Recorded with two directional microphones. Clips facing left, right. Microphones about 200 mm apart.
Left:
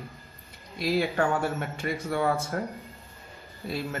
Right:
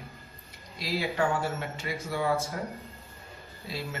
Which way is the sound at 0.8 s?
55° left (ahead or behind).